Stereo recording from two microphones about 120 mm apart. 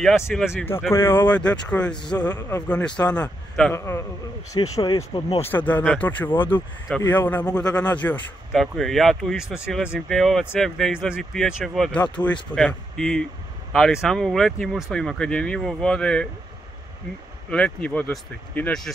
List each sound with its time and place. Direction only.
0.3 s speech: 5° left (ahead or behind)
0.7 s speech: 20° left (ahead or behind)
3.7 s a man's voice: 20° left (ahead or behind)
4.7 s speech: 35° left (ahead or behind)
5.5 s speech: 15° left (ahead or behind)
8.5 s speech: centre (ahead or behind)
17.5 s speech: 10° left (ahead or behind)